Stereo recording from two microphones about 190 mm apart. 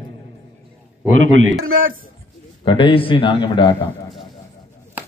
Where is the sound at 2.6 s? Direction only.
30° left (ahead or behind).